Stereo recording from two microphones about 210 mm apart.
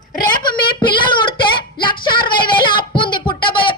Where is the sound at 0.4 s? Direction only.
25° left (ahead or behind).